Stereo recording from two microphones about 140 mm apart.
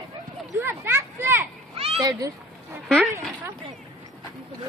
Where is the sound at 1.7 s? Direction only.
45° right (ahead or behind).